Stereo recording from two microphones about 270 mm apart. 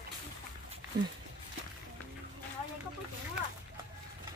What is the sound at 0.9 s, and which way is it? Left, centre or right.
Speech, right.